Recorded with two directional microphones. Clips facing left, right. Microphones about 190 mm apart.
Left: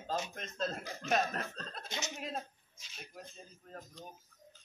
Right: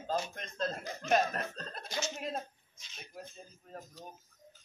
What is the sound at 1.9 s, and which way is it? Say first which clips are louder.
Speech: right 5 dB; 20° left (ahead or behind).